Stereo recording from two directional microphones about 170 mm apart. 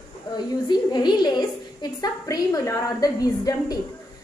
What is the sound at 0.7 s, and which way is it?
A woman's voice, 25° left (ahead or behind).